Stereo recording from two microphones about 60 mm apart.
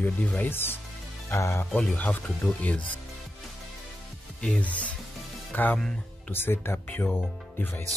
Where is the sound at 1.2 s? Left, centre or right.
Left.